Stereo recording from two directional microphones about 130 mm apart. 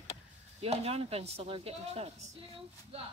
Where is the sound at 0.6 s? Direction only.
50° right (ahead or behind).